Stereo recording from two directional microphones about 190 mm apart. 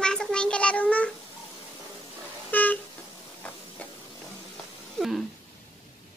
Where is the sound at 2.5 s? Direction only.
10° left (ahead or behind).